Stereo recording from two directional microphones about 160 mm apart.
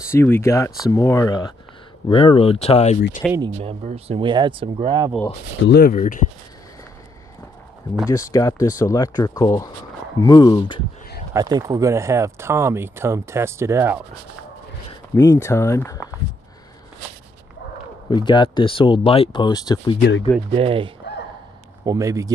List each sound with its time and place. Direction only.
0.1 s speech: 15° left (ahead or behind)
2.0 s speech: 35° left (ahead or behind)
3.2 s speech: 5° left (ahead or behind)
3.6 s speech: 40° right (ahead or behind)
5.7 s speech: 65° left (ahead or behind)
8.1 s speech: 20° left (ahead or behind)
11.3 s speech: 25° right (ahead or behind)
15.1 s speech: 20° left (ahead or behind)
18.1 s speech: 30° left (ahead or behind)
20.5 s speech: 35° right (ahead or behind)
21.8 s speech: 20° right (ahead or behind)